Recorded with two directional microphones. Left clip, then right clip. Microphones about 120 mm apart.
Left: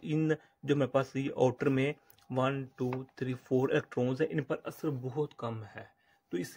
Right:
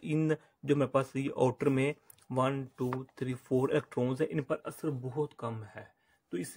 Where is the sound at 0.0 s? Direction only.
20° right (ahead or behind).